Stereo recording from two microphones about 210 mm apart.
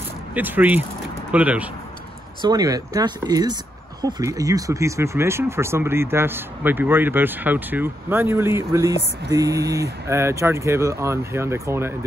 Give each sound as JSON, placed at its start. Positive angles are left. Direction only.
{"t": 0.3, "sound": "speech", "side_deg": -10}
{"t": 2.4, "sound": "speech", "side_deg": -15}